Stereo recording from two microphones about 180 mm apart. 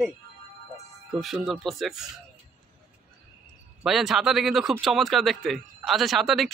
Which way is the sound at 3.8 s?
Centre (ahead or behind).